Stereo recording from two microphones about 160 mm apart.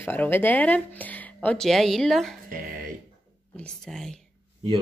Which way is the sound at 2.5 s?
60° right (ahead or behind).